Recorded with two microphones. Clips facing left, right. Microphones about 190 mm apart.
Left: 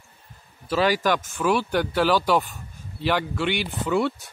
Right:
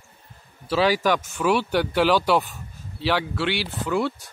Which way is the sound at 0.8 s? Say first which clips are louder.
Right 1 dB; 10° right (ahead or behind).